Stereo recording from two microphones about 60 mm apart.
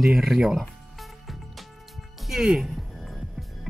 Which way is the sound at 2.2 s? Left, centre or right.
Centre.